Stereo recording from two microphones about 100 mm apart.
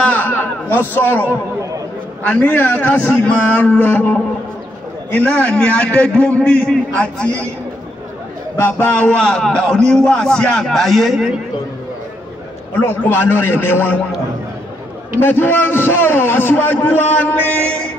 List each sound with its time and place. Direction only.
0.0 s a man's voice: 15° left (ahead or behind)
8.5 s a man's voice: 20° left (ahead or behind); by 11.3 s centre (ahead or behind)
12.8 s a man's voice: 20° left (ahead or behind)
15.1 s a man's voice: 20° left (ahead or behind)